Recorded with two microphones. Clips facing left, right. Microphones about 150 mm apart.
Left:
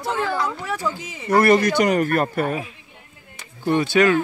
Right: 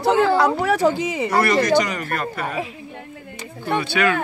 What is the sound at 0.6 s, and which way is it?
Speech, 80° right.